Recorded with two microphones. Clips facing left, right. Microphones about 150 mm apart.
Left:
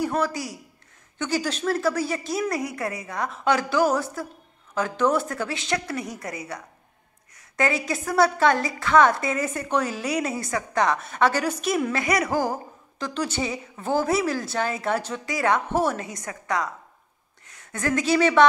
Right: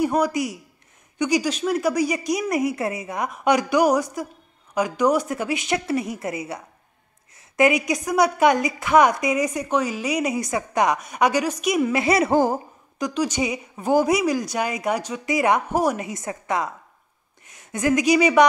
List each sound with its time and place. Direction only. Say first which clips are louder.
0.0 s a woman's voice: right 4 dB; 20° right (ahead or behind)
12.0 s speech: right 5 dB; 25° right (ahead or behind)
13.0 s a woman's voice: right 4 dB; 10° right (ahead or behind)